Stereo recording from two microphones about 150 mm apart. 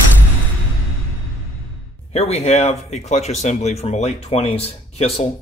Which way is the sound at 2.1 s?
45° left (ahead or behind).